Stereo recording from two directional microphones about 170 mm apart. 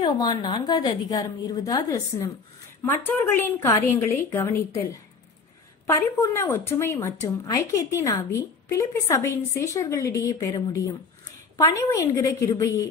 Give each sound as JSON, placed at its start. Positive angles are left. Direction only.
{"t": 0.0, "sound": "a woman's voice", "side_deg": 30}
{"t": 5.9, "sound": "a woman's voice", "side_deg": 15}